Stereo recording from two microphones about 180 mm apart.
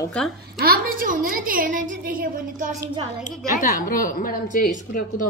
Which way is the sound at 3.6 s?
50° left (ahead or behind).